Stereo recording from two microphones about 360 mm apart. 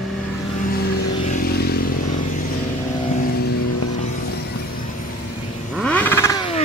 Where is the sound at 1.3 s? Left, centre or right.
Left.